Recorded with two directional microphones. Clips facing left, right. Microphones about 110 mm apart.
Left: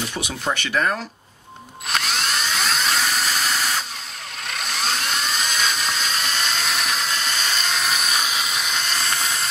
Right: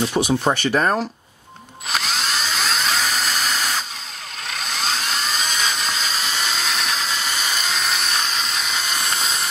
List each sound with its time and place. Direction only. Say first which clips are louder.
0.1 s speech: right 7 dB; 35° right (ahead or behind)
1.9 s tools: even; centre (ahead or behind)
4.5 s helicopter: even; centre (ahead or behind)
9.0 s steam: right 1 dB; 20° right (ahead or behind)